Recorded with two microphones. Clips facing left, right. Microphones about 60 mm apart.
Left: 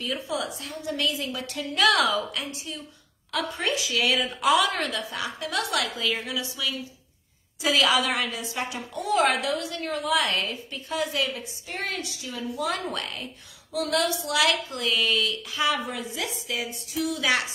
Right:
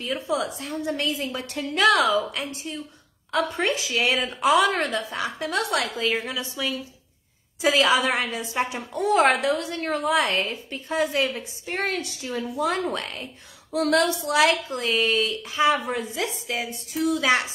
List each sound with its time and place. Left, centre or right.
0.0 s a woman's voice: right